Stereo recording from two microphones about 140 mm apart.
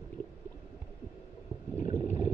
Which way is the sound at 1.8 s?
60° left (ahead or behind).